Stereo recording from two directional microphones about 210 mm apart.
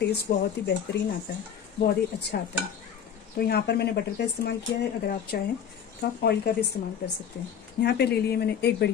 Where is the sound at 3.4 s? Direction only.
50° left (ahead or behind).